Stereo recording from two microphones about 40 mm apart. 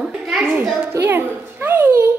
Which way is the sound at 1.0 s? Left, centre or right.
Right.